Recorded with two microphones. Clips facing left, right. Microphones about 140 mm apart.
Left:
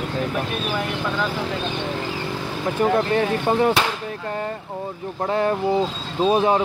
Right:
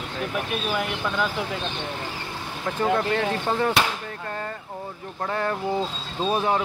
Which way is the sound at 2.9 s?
15° left (ahead or behind).